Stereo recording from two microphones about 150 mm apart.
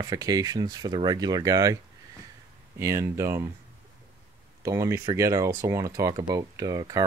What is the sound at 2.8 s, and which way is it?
Speech, 20° right (ahead or behind).